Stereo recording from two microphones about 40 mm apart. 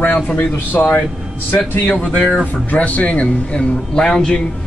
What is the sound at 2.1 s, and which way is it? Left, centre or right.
Speech, left.